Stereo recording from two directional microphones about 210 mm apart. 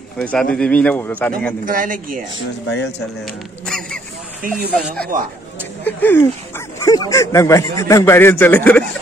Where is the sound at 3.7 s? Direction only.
5° left (ahead or behind).